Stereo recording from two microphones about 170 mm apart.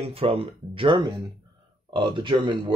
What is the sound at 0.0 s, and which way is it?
Speech, 35° right (ahead or behind).